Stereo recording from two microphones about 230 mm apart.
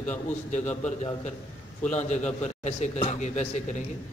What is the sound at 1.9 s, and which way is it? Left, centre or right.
Speech, left.